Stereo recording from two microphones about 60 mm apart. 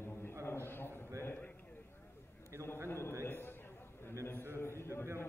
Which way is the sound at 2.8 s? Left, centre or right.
Left.